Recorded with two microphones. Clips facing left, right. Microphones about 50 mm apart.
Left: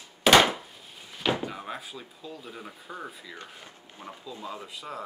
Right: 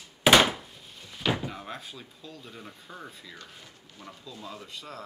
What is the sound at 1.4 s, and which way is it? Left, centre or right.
Speech, centre.